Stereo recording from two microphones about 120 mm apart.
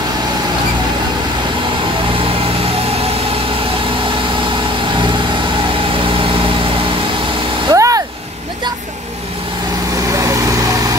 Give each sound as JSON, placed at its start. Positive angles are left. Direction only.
{"t": 7.7, "sound": "vehicle", "side_deg": -30}